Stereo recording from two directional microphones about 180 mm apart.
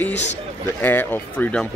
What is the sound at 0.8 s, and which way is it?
Speech, 10° left (ahead or behind).